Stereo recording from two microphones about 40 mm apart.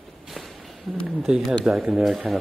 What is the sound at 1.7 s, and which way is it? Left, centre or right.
Speech, centre.